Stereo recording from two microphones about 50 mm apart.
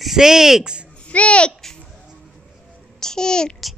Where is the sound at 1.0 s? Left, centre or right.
Left.